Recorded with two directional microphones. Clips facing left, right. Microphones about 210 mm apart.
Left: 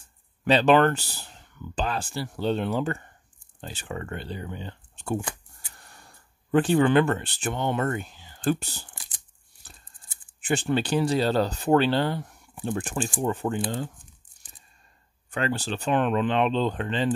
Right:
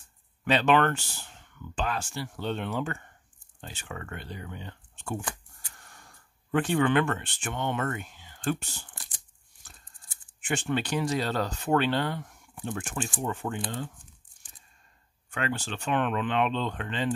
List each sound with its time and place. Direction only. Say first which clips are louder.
0.5 s speech: left 4 dB; 35° left (ahead or behind)
10.4 s speech: left 4 dB; 35° left (ahead or behind)
15.3 s speech: left 4 dB; 35° left (ahead or behind)